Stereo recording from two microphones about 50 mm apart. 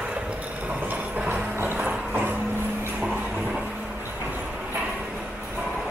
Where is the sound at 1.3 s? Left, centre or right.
Right.